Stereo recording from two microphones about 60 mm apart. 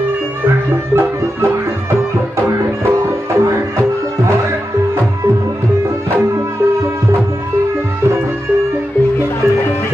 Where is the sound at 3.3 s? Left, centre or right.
Right.